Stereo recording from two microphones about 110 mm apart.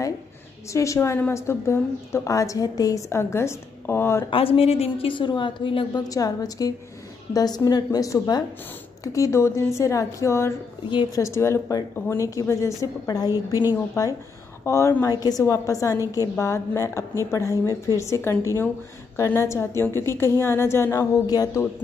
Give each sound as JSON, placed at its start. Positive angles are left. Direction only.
{"t": 0.7, "sound": "a woman's voice", "side_deg": 25}
{"t": 4.3, "sound": "a woman's voice", "side_deg": 60}
{"t": 6.0, "sound": "a woman's voice", "side_deg": 35}
{"t": 14.6, "sound": "a woman's voice", "side_deg": 25}